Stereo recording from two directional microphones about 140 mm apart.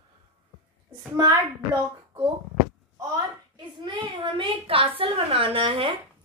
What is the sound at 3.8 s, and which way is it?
A woman's voice, 35° right (ahead or behind).